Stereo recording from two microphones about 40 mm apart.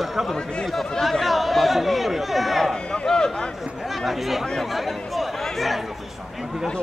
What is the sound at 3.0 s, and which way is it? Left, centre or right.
Speech, centre.